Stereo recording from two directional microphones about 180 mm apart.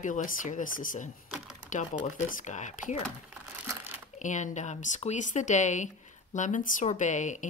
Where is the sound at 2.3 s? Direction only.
40° left (ahead or behind).